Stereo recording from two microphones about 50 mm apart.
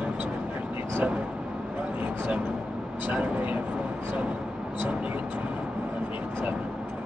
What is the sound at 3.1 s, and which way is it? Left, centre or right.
Speech, right.